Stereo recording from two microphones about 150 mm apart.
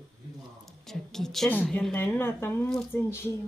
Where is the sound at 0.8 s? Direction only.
Centre (ahead or behind).